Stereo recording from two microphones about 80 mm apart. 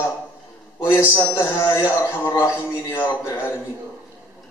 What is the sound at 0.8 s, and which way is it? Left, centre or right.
Speech, left.